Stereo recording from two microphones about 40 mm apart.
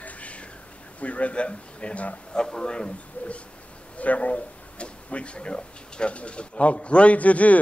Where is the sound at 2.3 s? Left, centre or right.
Centre.